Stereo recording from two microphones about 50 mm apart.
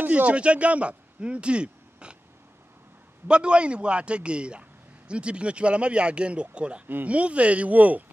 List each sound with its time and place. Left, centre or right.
0.0 s speech: right
3.3 s a man's voice: right